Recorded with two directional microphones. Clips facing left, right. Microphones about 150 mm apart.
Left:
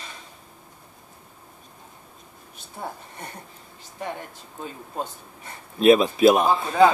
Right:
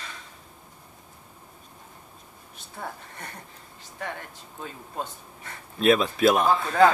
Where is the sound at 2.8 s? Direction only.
20° left (ahead or behind).